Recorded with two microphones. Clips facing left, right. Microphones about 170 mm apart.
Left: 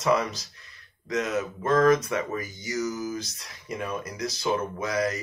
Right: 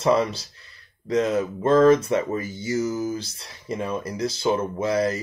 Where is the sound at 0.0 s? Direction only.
30° right (ahead or behind).